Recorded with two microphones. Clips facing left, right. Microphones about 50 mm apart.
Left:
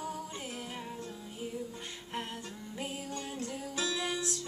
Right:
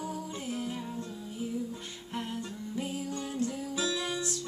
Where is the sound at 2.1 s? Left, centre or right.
Centre.